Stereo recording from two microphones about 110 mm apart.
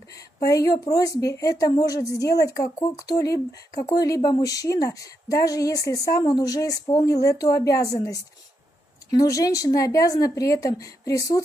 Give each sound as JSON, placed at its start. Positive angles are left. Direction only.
{"t": 0.1, "sound": "speech", "side_deg": 30}